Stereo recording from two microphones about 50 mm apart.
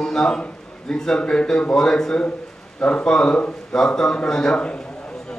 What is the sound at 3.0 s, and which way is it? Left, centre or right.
A man's voice, centre.